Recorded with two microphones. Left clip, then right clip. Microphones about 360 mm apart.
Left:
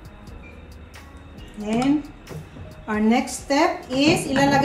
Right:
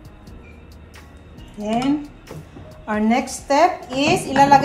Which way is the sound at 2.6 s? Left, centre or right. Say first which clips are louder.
Right 1 dB; centre.